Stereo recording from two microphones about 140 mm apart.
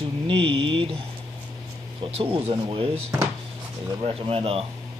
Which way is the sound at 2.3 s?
40° right (ahead or behind).